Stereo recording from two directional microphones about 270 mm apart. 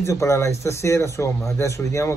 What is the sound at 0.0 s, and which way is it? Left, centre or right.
Speech, centre.